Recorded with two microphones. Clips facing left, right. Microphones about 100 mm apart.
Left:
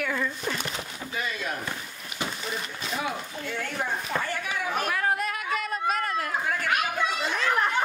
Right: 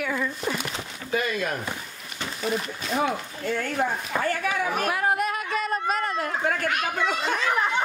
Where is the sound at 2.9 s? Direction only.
45° right (ahead or behind).